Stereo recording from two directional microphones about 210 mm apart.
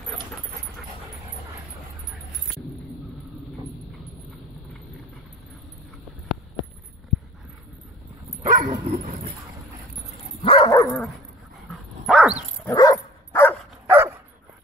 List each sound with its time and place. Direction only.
8.4 s dog: 20° right (ahead or behind)
10.4 s dog: 25° left (ahead or behind)
11.7 s dog: centre (ahead or behind)
12.4 s dog: 15° left (ahead or behind)
13.8 s dog: 10° right (ahead or behind)